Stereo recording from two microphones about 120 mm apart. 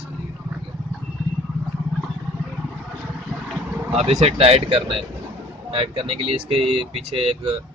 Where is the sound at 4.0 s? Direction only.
60° right (ahead or behind).